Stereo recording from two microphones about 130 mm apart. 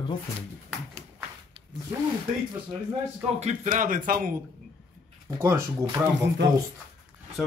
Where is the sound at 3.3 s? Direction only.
75° right (ahead or behind); by 4.4 s 90° right.